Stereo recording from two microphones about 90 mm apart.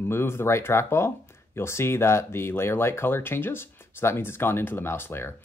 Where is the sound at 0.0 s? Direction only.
25° left (ahead or behind).